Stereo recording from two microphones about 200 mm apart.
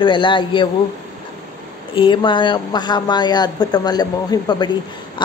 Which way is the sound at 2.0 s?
25° left (ahead or behind).